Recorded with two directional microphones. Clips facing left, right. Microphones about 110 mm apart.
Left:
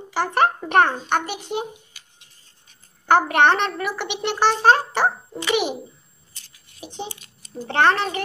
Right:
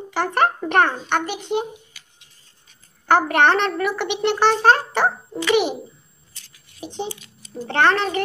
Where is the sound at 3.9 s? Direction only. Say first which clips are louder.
Right 4 dB; 5° left (ahead or behind).